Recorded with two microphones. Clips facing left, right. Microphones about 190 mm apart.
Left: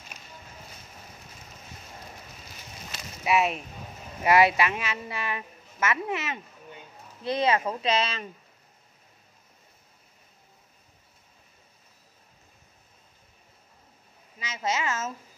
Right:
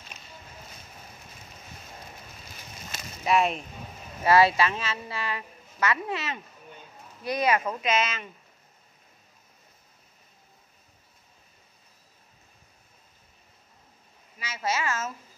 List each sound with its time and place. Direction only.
2.9 s a sound: 45° right (ahead or behind)
3.3 s speech: 5° left (ahead or behind)
4.2 s speech: 20° left (ahead or behind)
14.4 s a woman's voice: 20° left (ahead or behind)